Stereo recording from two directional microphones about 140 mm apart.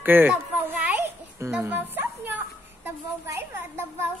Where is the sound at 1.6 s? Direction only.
15° right (ahead or behind).